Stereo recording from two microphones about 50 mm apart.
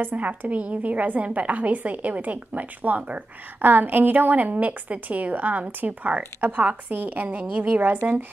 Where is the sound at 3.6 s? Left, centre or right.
Right.